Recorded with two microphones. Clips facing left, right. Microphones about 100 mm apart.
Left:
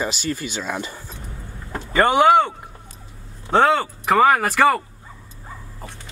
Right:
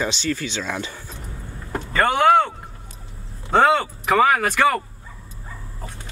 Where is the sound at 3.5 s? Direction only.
Centre (ahead or behind).